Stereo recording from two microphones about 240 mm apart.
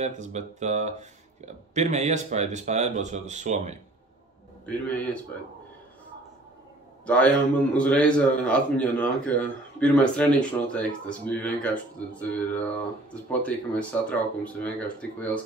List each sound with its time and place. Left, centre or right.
0.0 s speech: right
4.6 s speech: centre
7.1 s speech: centre